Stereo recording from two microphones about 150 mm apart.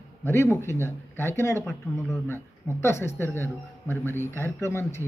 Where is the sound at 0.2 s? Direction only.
15° left (ahead or behind).